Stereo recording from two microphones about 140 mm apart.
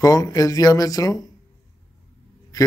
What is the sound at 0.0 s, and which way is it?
Speech, 25° left (ahead or behind).